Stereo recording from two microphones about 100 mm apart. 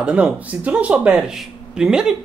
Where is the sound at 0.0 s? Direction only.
10° right (ahead or behind).